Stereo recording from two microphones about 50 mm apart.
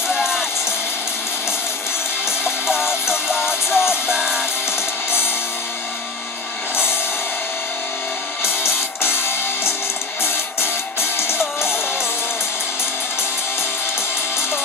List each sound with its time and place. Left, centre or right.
0.1 s music: centre
2.2 s music: centre
8.5 s music: left